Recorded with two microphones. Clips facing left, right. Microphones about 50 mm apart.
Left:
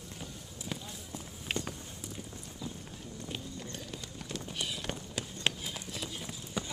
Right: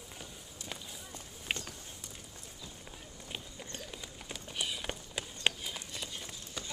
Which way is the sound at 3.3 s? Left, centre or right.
Centre.